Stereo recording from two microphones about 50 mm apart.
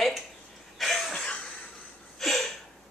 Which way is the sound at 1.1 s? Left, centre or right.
Centre.